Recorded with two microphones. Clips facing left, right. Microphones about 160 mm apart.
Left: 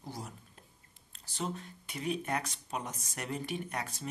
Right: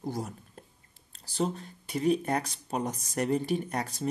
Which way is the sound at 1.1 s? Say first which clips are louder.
Right 7 dB; 35° right (ahead or behind).